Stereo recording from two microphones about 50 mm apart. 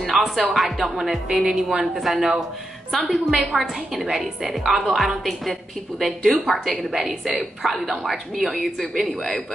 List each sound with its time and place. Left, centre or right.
0.0 s a woman's voice: centre